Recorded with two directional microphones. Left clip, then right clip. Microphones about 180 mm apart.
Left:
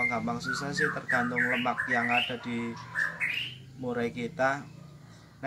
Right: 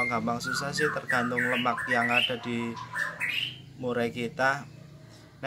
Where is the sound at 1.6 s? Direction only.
15° right (ahead or behind).